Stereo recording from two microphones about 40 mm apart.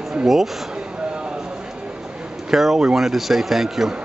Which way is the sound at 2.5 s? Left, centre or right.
Centre.